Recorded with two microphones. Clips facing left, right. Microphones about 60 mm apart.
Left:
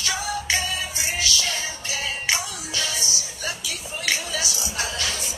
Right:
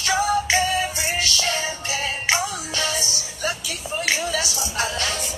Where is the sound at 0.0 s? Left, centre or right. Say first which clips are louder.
Right 7 dB; right.